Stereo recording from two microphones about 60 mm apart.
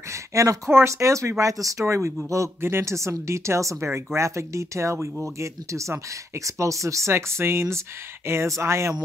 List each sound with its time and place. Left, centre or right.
0.1 s a sound: right
0.7 s speech: right
1.4 s speech: right
2.6 s speech: right